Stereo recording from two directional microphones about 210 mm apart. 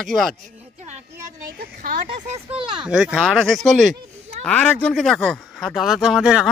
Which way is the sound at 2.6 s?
25° right (ahead or behind).